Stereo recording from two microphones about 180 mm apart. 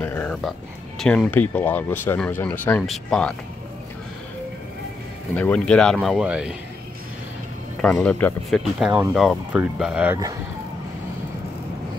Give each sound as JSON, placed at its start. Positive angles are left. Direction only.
{"t": 0.0, "sound": "speech", "side_deg": 10}
{"t": 5.3, "sound": "speech", "side_deg": 10}
{"t": 7.8, "sound": "speech", "side_deg": 5}